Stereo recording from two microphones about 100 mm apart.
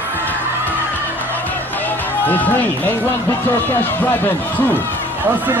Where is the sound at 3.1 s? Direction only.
20° left (ahead or behind).